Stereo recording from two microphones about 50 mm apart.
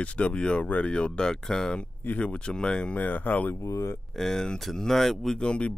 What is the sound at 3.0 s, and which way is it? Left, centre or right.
Speech, left.